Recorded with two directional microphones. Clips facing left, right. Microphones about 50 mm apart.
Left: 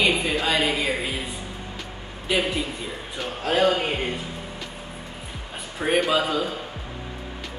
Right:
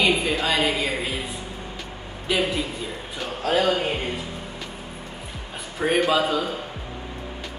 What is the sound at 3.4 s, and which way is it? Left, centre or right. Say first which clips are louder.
Speech: even; left.